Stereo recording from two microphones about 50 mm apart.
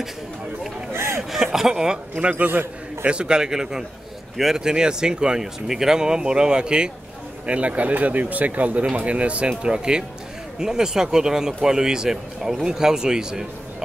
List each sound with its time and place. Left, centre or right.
0.9 s a sound: right
1.3 s speech: centre
2.3 s a man's voice: right
3.1 s speech: centre